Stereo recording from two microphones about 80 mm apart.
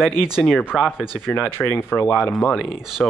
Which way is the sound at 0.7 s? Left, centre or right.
Centre.